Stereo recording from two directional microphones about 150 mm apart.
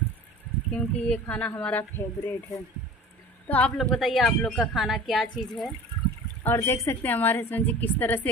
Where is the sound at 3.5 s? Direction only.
5° left (ahead or behind).